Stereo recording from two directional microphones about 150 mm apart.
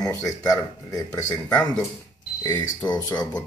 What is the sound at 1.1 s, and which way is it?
Speech, 5° left (ahead or behind).